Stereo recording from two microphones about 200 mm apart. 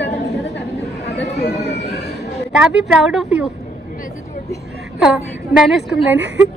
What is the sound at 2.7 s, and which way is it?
Speech, 5° right (ahead or behind).